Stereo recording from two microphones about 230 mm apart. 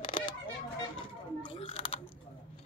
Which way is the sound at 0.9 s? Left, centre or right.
Left.